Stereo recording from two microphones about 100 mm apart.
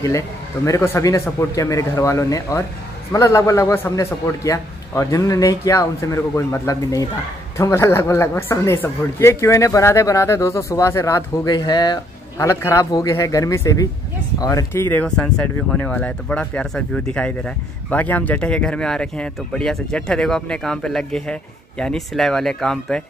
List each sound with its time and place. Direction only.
0.7 s a man's voice: 30° left (ahead or behind)
12.4 s a man's voice: 30° left (ahead or behind)
14.7 s speech: 20° left (ahead or behind)